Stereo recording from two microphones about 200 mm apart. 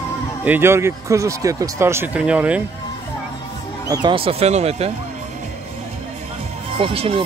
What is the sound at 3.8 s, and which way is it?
Speech, 20° right (ahead or behind).